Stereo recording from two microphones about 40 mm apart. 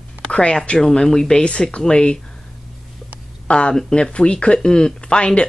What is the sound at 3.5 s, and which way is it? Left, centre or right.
Speech, left.